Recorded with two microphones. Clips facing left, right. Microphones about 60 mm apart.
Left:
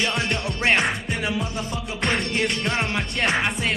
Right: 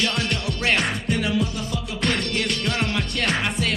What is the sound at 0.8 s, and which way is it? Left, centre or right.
Music, centre.